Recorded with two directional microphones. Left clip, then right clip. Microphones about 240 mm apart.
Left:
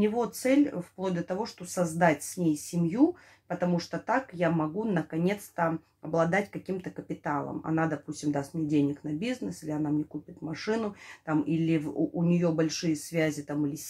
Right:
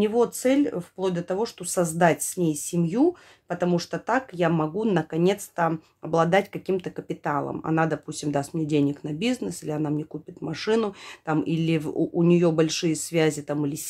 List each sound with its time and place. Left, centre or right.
0.0 s speech: right